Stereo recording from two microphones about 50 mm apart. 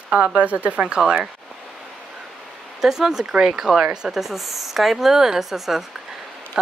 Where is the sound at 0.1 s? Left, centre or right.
Right.